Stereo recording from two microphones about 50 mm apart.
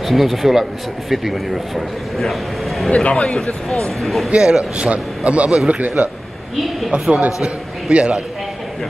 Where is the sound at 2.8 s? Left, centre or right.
Left.